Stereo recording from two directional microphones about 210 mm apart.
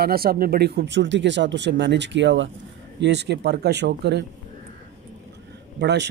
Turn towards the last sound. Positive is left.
turn(degrees=-55)  # may be behind; listen again after turning